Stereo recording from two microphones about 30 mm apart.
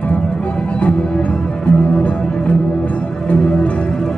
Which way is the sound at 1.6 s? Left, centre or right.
Left.